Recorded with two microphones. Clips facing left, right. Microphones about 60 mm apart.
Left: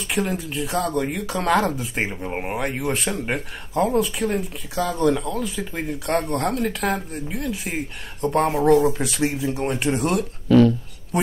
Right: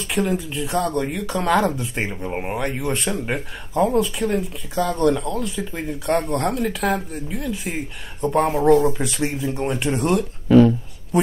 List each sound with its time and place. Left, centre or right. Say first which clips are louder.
0.1 s speech: right 2 dB; centre
10.5 s speech: right 2 dB; centre